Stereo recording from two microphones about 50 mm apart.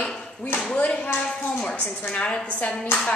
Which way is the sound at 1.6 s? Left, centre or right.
Centre.